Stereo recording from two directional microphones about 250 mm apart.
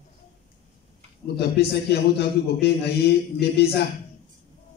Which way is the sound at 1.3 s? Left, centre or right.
Left.